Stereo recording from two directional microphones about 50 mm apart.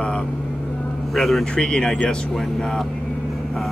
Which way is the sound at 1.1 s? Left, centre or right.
Centre.